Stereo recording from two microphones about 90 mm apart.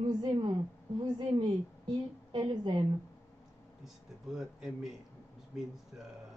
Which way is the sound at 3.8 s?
5° right (ahead or behind).